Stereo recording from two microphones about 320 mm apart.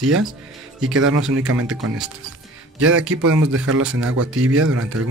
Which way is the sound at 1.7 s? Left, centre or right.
Centre.